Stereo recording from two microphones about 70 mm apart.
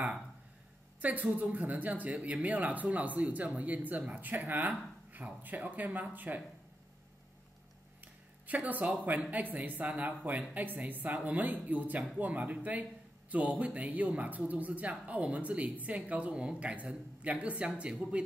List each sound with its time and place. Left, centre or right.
1.0 s speech: right
8.0 s a sound: right
9.0 s speech: right